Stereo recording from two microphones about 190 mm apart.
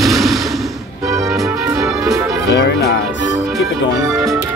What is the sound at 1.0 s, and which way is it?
Music, 15° right (ahead or behind).